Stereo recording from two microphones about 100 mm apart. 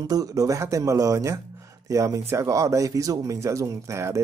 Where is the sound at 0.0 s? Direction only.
35° right (ahead or behind).